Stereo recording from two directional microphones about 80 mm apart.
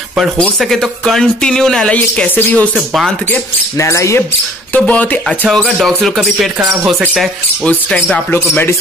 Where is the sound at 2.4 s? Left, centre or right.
Left.